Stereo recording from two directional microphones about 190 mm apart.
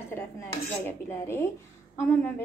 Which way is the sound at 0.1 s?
10° left (ahead or behind).